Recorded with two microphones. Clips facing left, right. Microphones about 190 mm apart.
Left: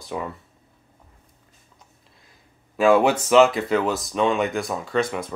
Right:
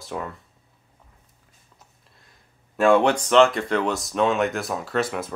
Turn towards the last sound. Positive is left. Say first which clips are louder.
# left 1 dB
turn(degrees=-5)  # may be behind; listen again after turning